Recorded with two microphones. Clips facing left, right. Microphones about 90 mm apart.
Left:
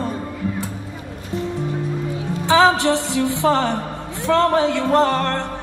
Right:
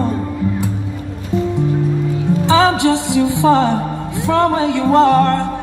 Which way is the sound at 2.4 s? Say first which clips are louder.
Right 1 dB; 15° right (ahead or behind).